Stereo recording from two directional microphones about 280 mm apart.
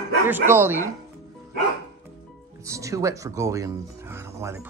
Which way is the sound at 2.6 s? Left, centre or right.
Centre.